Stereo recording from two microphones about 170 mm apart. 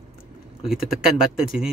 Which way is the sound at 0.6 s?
Centre (ahead or behind).